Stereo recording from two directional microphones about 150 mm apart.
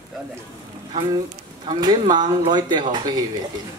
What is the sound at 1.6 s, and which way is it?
Speech, 30° right (ahead or behind).